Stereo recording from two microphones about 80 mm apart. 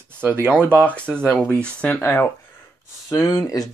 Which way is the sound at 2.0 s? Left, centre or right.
Left.